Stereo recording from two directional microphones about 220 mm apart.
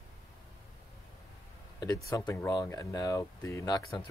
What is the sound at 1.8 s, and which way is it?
Speech, 15° left (ahead or behind).